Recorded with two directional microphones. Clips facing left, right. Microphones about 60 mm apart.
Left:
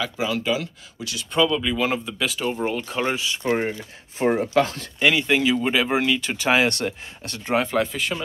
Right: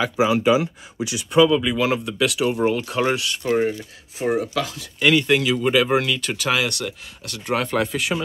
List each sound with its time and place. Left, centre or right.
0.0 s speech: centre
3.4 s speech: centre
4.2 s speech: left
4.9 s speech: centre
6.3 s speech: left
7.7 s speech: centre